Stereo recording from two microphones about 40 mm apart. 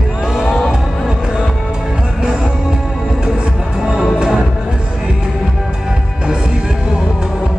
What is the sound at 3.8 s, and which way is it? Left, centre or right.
Music, centre.